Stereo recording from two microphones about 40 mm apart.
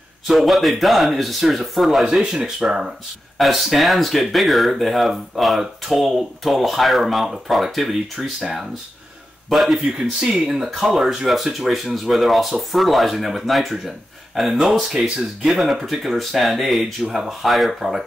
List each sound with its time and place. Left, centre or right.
0.3 s speech: centre
3.3 s speech: centre
8.2 s speech: centre
9.5 s speech: centre
9.8 s speech: centre
15.4 s speech: centre